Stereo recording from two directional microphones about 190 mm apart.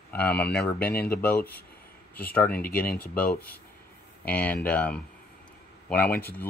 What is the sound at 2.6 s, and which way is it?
Speech, 50° left (ahead or behind).